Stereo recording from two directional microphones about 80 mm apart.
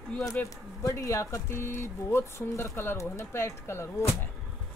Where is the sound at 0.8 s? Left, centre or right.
Left.